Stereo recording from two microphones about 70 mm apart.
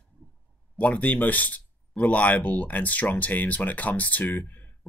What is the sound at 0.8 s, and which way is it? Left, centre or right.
Speech, left.